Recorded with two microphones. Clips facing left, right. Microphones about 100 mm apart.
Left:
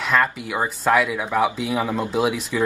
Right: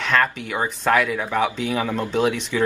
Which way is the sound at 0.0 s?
5° left (ahead or behind).